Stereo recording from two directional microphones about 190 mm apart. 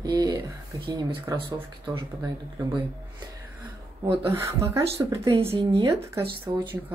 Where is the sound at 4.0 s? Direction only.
30° right (ahead or behind).